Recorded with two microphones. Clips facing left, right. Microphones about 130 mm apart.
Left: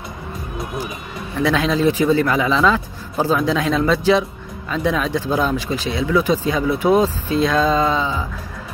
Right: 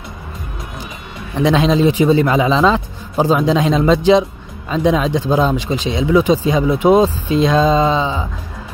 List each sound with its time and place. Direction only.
1.4 s a man's voice: 20° right (ahead or behind)